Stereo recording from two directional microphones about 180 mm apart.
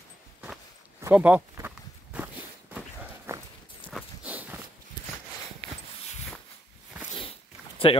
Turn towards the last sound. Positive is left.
turn(degrees=30)  # may be behind; listen again after turning